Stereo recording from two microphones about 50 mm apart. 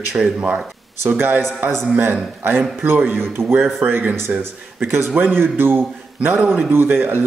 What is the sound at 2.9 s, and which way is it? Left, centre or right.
Speech, right.